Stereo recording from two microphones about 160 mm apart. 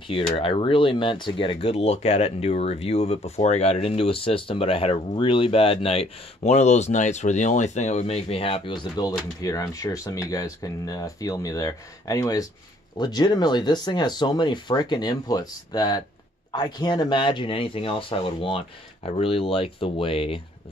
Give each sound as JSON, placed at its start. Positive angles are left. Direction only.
{"t": 0.3, "sound": "speech", "side_deg": 35}